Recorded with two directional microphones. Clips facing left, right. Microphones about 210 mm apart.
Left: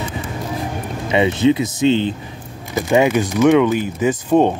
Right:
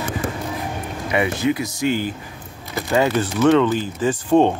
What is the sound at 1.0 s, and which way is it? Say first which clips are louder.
Speech: left 5 dB; 20° left (ahead or behind).